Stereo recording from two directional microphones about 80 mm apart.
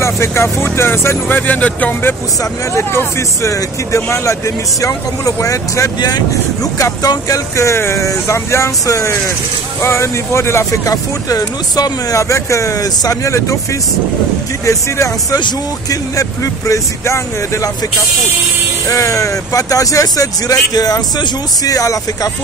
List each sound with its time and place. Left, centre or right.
0.0 s speech: left
5.9 s speech: left
10.9 s speech: left
12.2 s speech: left
15.9 s speech: left
18.9 s speech: left